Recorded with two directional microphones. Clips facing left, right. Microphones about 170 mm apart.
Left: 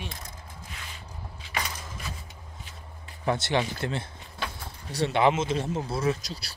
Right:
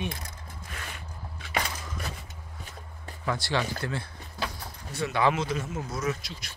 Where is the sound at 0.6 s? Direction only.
55° right (ahead or behind).